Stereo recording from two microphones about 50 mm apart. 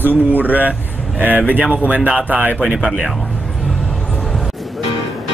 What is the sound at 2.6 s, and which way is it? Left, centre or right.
Speech, centre.